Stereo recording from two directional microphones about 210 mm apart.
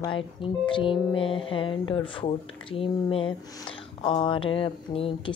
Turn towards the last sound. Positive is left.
turn(degrees=25)  # may be behind; listen again after turning